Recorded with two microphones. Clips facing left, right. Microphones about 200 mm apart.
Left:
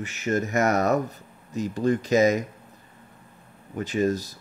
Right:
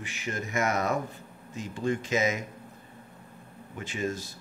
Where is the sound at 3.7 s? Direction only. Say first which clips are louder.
Left 8 dB; 40° left (ahead or behind).